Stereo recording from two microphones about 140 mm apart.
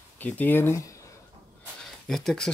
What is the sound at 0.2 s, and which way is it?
Speech, 15° left (ahead or behind).